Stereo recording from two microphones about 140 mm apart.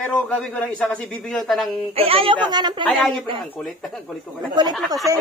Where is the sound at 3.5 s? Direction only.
5° left (ahead or behind).